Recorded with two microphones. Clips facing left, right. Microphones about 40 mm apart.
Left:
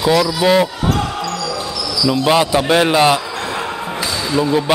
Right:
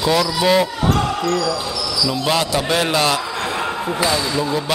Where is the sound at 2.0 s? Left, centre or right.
Centre.